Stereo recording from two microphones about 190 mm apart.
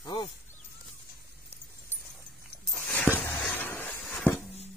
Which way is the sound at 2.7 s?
5° left (ahead or behind).